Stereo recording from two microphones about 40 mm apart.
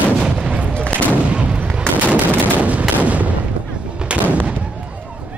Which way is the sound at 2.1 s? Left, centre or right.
Right.